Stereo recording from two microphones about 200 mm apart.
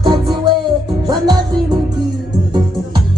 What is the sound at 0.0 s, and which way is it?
Music, 25° right (ahead or behind).